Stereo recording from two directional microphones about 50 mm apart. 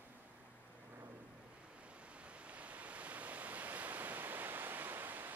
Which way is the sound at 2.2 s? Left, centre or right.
Right.